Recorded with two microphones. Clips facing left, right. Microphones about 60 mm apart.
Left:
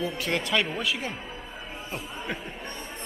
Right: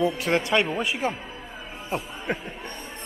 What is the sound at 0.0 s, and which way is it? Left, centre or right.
Speech, right.